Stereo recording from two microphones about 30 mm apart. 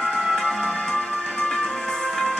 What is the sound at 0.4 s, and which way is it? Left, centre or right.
Music, left.